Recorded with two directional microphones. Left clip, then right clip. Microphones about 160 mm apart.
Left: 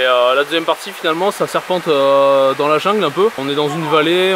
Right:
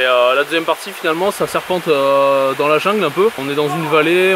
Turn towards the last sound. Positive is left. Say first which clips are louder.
# right 1 dB
turn(degrees=20)  # may be behind; listen again after turning